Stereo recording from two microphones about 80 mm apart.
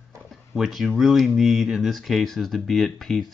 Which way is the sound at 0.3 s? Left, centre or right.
Centre.